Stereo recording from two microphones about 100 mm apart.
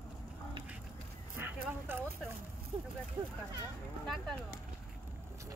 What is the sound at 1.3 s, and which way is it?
Speech, 20° right (ahead or behind).